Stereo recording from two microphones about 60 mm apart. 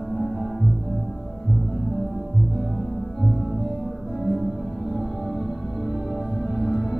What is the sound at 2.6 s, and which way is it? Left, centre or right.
Music, centre.